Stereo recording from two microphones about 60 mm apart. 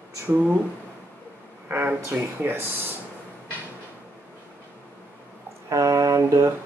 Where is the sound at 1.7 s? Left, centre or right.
Right.